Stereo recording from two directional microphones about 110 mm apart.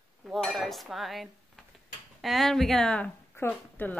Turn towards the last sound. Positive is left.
turn(degrees=20)  # may be behind; listen again after turning